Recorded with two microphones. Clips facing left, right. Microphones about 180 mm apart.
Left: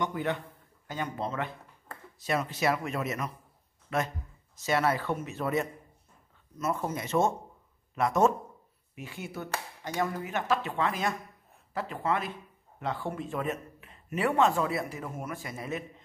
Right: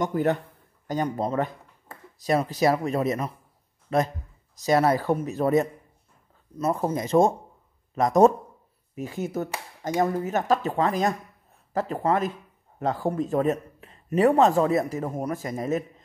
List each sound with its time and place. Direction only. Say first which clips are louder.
0.0 s a man's voice: right 7 dB; 45° right (ahead or behind)